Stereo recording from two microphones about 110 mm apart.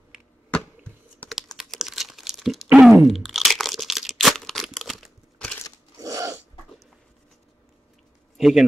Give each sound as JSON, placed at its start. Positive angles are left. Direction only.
{"t": 1.3, "sound": "a sound", "side_deg": 0}
{"t": 5.9, "sound": "sneeze", "side_deg": -35}
{"t": 8.4, "sound": "speech", "side_deg": -5}